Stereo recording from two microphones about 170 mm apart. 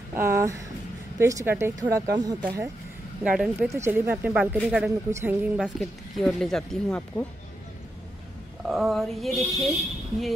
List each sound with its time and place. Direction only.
0.1 s speech: 15° right (ahead or behind)
3.3 s speech: 5° right (ahead or behind)
3.7 s speech: 15° right (ahead or behind); by 7.2 s 5° left (ahead or behind)
8.6 s speech: centre (ahead or behind)